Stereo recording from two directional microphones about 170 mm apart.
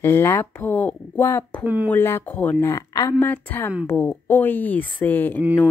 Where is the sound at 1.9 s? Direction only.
15° left (ahead or behind).